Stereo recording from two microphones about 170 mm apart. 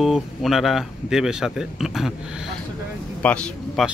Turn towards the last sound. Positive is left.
turn(degrees=5)  # may be behind; listen again after turning